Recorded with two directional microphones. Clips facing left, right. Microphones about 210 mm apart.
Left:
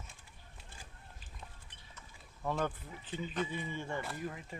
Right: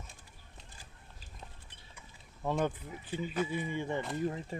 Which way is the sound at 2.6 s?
15° right (ahead or behind).